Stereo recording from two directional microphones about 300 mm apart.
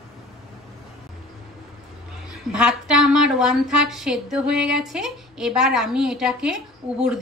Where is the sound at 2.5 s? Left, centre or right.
Centre.